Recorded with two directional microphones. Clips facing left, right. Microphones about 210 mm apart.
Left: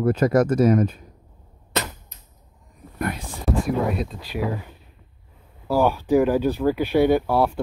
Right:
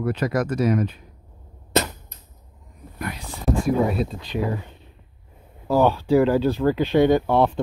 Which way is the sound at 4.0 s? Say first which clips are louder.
Right 3 dB; centre (ahead or behind).